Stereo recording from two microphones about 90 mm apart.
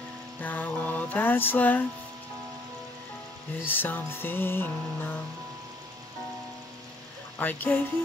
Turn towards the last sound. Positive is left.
turn(degrees=20)  # may be behind; listen again after turning